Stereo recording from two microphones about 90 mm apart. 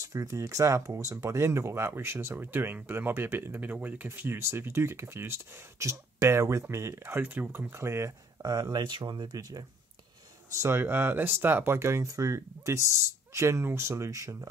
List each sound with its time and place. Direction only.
0.0 s speech: 40° right (ahead or behind)
8.4 s speech: 45° right (ahead or behind)
10.6 s speech: 30° right (ahead or behind)